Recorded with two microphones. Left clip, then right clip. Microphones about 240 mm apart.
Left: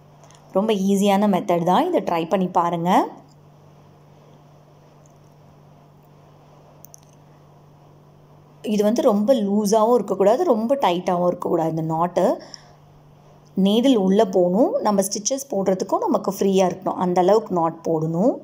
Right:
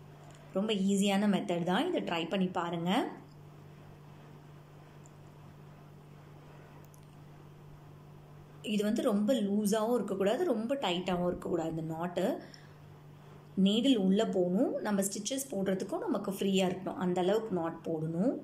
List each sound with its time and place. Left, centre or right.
0.6 s speech: centre
8.6 s speech: centre
13.6 s speech: left